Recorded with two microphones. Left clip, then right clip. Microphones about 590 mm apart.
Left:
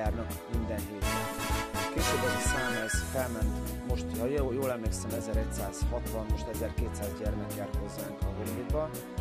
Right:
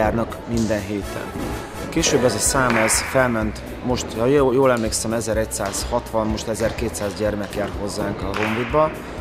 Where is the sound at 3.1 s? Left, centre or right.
Left.